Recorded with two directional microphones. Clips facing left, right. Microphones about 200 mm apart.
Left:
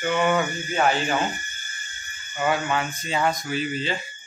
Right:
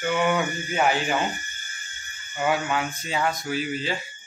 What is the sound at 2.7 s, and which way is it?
Speech, 5° right (ahead or behind).